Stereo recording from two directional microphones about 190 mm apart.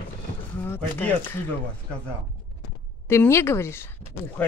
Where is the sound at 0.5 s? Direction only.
10° left (ahead or behind).